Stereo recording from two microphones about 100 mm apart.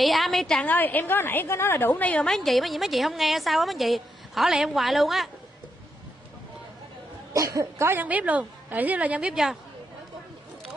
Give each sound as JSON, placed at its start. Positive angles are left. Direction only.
{"t": 0.0, "sound": "a woman's voice", "side_deg": 0}
{"t": 0.7, "sound": "a woman's voice", "side_deg": 20}
{"t": 7.3, "sound": "speech", "side_deg": -35}
{"t": 7.9, "sound": "a woman's voice", "side_deg": -15}